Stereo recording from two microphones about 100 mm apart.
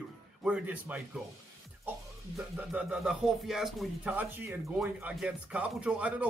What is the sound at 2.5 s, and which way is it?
Speech, 10° right (ahead or behind).